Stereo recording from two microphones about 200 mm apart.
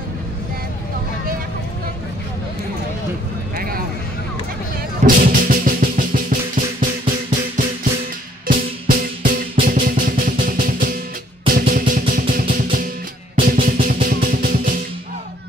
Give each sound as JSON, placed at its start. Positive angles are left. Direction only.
{"t": 3.5, "sound": "vehicle", "side_deg": -45}
{"t": 5.0, "sound": "drum", "side_deg": -45}
{"t": 11.4, "sound": "music", "side_deg": -45}